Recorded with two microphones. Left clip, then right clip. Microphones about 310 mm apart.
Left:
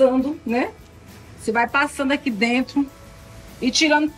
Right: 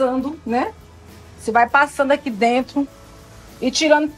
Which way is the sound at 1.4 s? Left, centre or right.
Right.